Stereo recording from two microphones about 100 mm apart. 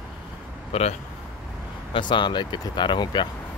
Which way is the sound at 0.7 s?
70° left (ahead or behind).